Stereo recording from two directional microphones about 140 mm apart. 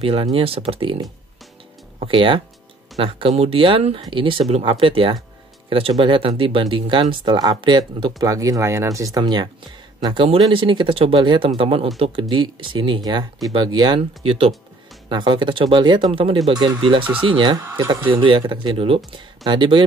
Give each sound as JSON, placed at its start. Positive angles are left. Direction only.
{"t": 0.0, "sound": "speech", "side_deg": -40}
{"t": 8.2, "sound": "speech", "side_deg": -25}
{"t": 17.6, "sound": "speech", "side_deg": -25}
{"t": 18.0, "sound": "speech", "side_deg": -35}